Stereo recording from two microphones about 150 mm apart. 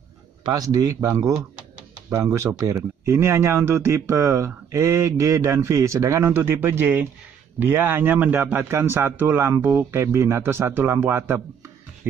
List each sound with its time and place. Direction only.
0.5 s a man's voice: 25° right (ahead or behind)